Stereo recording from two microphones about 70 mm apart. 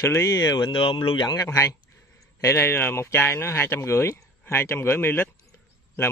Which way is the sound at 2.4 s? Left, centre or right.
Left.